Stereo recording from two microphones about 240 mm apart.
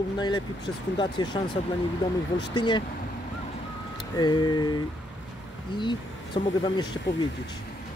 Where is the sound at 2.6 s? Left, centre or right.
Centre.